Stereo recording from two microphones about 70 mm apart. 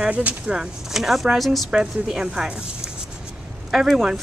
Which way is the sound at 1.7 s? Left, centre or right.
Centre.